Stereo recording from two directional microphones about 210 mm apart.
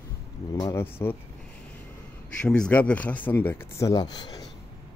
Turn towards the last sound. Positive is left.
turn(degrees=20)  # may be behind; listen again after turning